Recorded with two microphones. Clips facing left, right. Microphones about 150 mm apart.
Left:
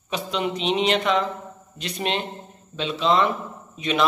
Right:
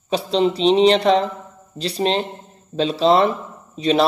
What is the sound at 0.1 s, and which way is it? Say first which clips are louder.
Speech: right 8 dB; 35° right (ahead or behind).